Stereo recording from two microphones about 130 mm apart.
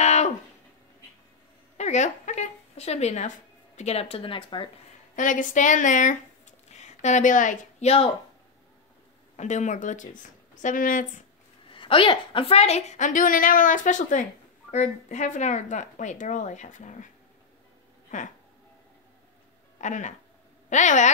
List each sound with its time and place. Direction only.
0.0 s a sound: 60° left (ahead or behind)
1.8 s speech: 65° left (ahead or behind); by 4.6 s 40° left (ahead or behind)
5.1 s speech: 85° left
9.4 s a woman's voice: 65° left (ahead or behind); by 11.1 s 90° left
11.7 s a woman's voice: 40° left (ahead or behind); by 17.1 s 75° left (ahead or behind)
19.8 s a woman's voice: 70° left (ahead or behind)